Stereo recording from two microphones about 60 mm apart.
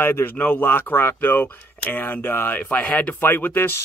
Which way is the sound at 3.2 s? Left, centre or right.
Left.